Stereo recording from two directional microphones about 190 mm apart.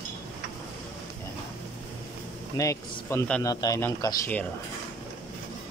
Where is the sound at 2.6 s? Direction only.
15° left (ahead or behind).